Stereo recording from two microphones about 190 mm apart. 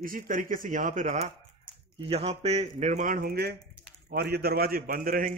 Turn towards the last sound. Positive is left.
turn(degrees=-50)  # may be behind; listen again after turning